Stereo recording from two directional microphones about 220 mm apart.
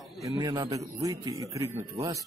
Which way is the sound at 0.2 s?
15° right (ahead or behind).